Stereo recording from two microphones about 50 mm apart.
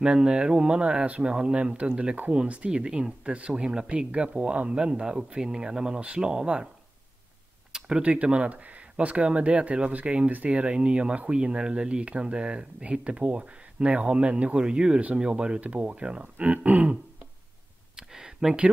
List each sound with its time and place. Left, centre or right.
0.0 s speech: centre
8.0 s speech: right
15.6 s speech: right
17.9 s a sound: centre